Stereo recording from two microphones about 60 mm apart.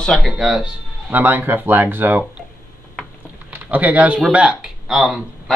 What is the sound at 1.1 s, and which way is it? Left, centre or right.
Speech, right.